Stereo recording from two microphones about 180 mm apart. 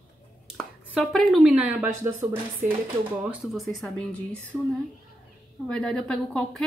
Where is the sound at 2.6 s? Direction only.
45° right (ahead or behind).